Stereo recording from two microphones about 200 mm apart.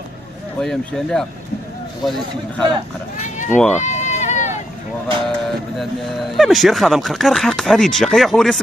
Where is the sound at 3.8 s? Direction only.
35° left (ahead or behind).